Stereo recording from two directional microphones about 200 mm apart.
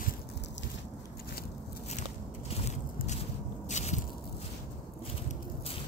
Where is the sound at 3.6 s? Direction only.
35° left (ahead or behind).